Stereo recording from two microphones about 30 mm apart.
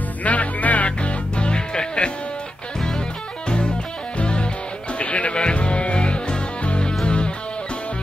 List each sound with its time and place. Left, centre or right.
0.2 s music: left
3.4 s music: left
4.9 s music: left
5.3 s music: left